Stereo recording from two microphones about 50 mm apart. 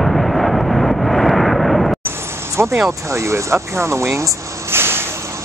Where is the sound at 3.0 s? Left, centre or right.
Right.